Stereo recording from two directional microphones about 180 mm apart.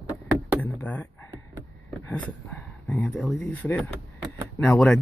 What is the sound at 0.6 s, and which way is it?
Speech, 10° left (ahead or behind).